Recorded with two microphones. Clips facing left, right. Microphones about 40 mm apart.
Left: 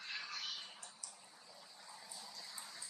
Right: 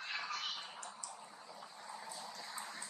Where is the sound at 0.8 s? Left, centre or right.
Right.